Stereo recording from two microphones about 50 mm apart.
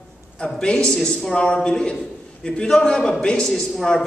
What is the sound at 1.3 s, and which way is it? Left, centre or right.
A man's voice, centre.